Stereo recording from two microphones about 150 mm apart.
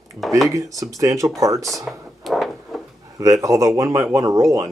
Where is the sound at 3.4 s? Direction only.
20° right (ahead or behind).